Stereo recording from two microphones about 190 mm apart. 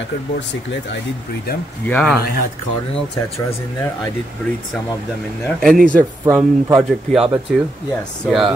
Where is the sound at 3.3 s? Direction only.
15° left (ahead or behind).